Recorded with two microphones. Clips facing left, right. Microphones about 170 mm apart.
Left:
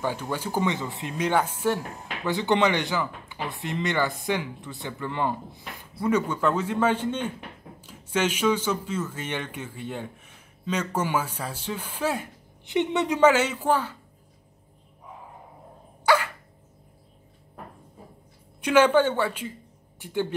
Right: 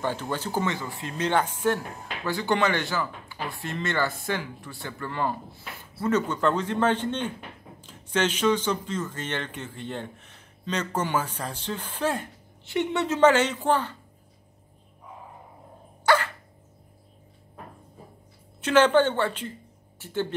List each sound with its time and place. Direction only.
0.0 s speech: 10° left (ahead or behind)
2.2 s speech: 20° left (ahead or behind)
16.1 s dog: 10° left (ahead or behind)
18.6 s speech: 10° left (ahead or behind)